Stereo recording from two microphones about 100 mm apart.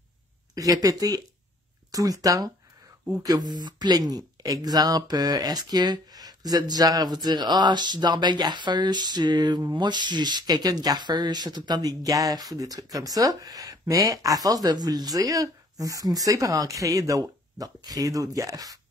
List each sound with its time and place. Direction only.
0.6 s speech: 35° right (ahead or behind)